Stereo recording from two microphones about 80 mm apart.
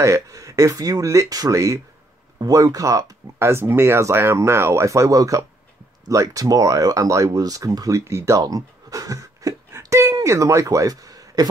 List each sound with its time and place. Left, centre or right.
0.0 s speech: right
3.3 s speech: right
8.0 s speech: right